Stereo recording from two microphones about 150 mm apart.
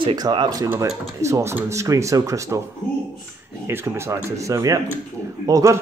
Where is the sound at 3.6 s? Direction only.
15° right (ahead or behind).